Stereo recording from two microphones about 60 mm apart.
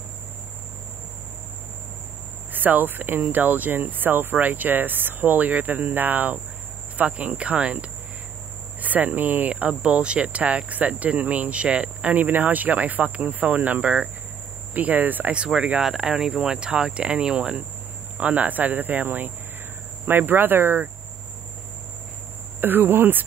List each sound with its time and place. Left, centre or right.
2.5 s speech: right
8.8 s speech: right
15.3 s speech: centre
18.2 s speech: right
22.6 s speech: right